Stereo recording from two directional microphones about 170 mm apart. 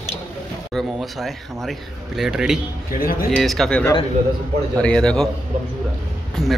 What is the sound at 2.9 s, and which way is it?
Speech, 60° left (ahead or behind).